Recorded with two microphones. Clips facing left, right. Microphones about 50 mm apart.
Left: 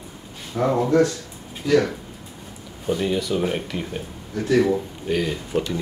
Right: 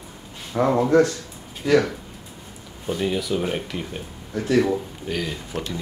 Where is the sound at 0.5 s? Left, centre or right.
Right.